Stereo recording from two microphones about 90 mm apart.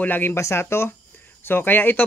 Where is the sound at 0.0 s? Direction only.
20° left (ahead or behind).